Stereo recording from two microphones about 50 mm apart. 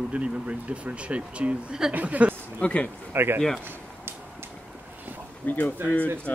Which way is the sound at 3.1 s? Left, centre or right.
Right.